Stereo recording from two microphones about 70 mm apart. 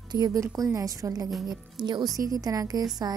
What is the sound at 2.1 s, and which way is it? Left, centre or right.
Music, right.